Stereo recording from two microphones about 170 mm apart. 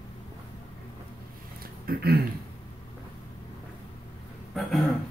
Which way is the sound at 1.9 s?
65° right (ahead or behind).